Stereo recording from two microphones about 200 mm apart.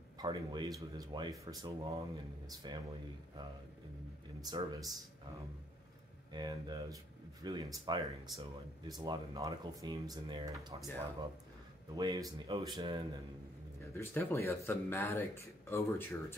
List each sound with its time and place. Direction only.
0.2 s speech: 20° right (ahead or behind)
4.4 s speech: 20° right (ahead or behind)
6.3 s speech: 20° right (ahead or behind)
11.9 s speech: 15° right (ahead or behind)
13.9 s speech: 15° left (ahead or behind)